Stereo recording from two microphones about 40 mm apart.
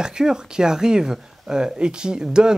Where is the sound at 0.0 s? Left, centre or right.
Centre.